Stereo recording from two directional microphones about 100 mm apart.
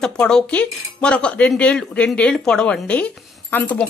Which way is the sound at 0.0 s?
5° left (ahead or behind).